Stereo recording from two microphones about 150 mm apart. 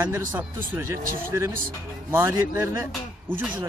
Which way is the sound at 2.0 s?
15° right (ahead or behind).